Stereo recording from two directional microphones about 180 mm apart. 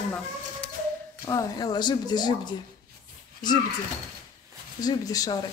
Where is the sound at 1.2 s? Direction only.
20° left (ahead or behind).